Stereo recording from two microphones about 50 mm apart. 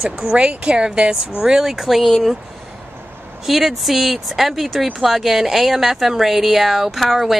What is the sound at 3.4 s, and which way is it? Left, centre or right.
A woman's voice, centre.